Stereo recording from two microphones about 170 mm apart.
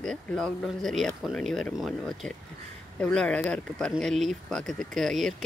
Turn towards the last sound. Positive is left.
turn(degrees=0)  # may be behind; listen again after turning